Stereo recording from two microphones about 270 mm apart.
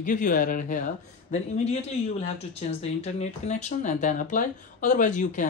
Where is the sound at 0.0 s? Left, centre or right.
Left.